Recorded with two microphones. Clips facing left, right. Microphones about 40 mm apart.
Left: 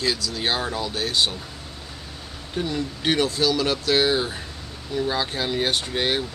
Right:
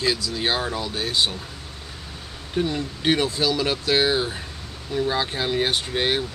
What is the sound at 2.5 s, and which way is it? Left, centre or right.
Speech, centre.